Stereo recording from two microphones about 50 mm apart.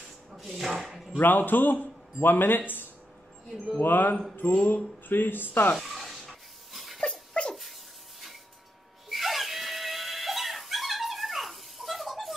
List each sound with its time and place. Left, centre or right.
0.3 s wood: centre
0.7 s a sound: centre
1.2 s a man's voice: left
5.8 s a sound: centre
7.0 s dog: centre
9.1 s dog: centre